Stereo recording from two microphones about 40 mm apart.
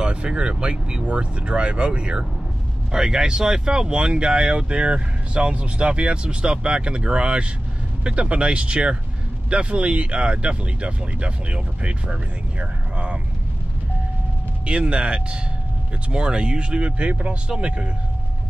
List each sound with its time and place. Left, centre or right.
0.0 s speech: right
14.7 s speech: right